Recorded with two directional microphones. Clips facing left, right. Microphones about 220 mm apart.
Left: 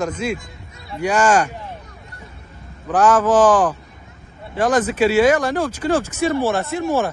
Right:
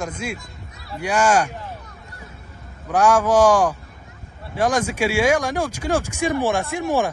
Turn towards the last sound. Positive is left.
turn(degrees=-15)  # may be behind; listen again after turning